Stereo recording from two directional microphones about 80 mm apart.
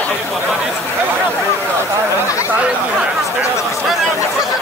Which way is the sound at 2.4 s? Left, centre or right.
Centre.